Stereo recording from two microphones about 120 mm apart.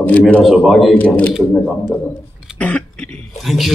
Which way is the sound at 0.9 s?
10° left (ahead or behind).